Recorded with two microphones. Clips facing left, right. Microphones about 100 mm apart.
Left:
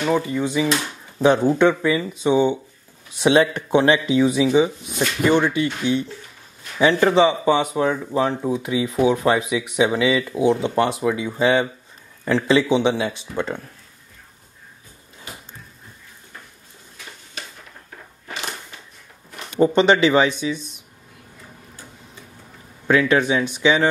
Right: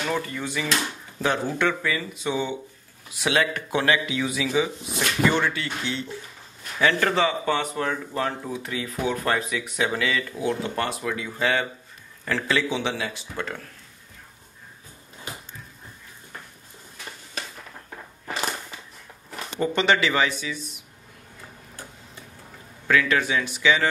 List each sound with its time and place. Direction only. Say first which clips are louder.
0.0 s speech: left 7 dB; 15° left (ahead or behind)
19.6 s speech: left 7 dB; 25° left (ahead or behind)
22.8 s speech: left 5 dB; 25° left (ahead or behind)